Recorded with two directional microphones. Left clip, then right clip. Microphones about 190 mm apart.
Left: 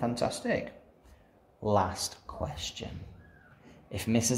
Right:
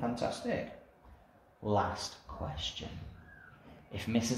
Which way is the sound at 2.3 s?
55° left (ahead or behind).